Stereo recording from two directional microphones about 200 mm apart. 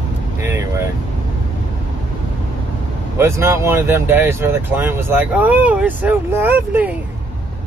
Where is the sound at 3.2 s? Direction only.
15° right (ahead or behind).